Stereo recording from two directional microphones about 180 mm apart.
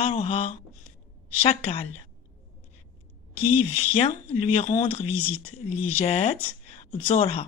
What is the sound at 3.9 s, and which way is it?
Speech, 30° left (ahead or behind).